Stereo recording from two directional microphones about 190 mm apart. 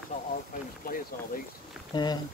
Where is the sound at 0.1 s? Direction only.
40° left (ahead or behind).